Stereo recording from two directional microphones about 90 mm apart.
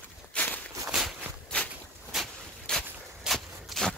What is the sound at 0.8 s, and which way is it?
Walk, 5° right (ahead or behind).